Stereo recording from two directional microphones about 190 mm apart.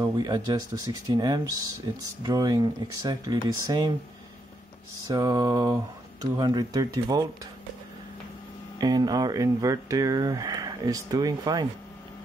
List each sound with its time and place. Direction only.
0.0 s speech: 20° right (ahead or behind)
5.0 s speech: 20° right (ahead or behind)
8.7 s speech: 20° right (ahead or behind)